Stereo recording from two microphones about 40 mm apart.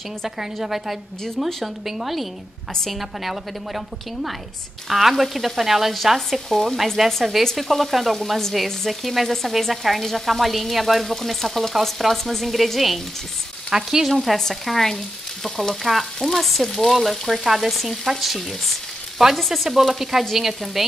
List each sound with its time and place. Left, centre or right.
0.7 s sizzle: centre
6.5 s speech: centre
7.1 s sizzle: centre
13.7 s frying: centre
14.0 s sizzle: centre